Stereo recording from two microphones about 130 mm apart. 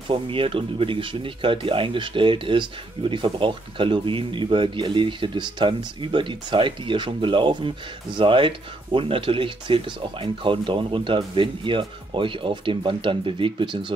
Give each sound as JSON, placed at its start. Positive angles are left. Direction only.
{"t": 0.1, "sound": "speech", "side_deg": -45}